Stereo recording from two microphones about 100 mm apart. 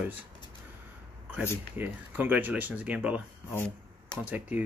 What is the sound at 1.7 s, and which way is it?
Speech, 15° right (ahead or behind).